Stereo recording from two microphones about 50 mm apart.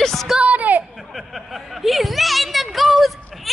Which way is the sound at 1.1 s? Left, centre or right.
Centre.